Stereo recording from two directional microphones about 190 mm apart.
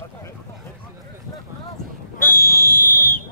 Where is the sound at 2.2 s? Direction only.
50° left (ahead or behind).